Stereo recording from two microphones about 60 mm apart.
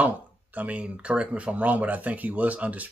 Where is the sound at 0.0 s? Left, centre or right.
Right.